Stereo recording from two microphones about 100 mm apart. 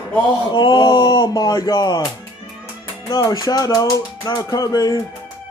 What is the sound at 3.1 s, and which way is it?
Music, 40° left (ahead or behind).